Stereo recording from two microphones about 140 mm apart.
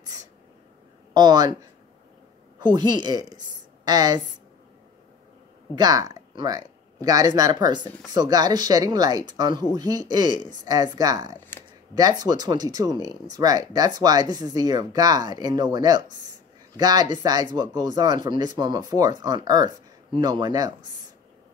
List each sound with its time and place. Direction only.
0.0 s a sound: 25° right (ahead or behind)
1.1 s a woman's voice: 30° right (ahead or behind)
5.8 s speech: 25° right (ahead or behind)